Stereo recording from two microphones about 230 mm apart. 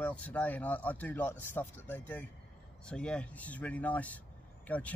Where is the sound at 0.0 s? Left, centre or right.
Centre.